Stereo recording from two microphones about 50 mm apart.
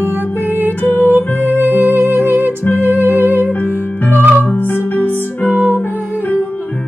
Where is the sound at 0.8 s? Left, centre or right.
Left.